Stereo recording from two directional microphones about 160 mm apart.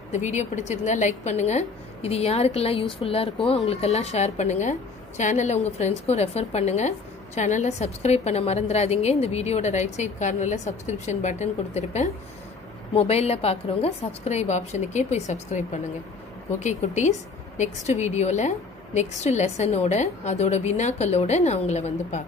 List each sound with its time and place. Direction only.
0.1 s a woman's voice: 50° left (ahead or behind)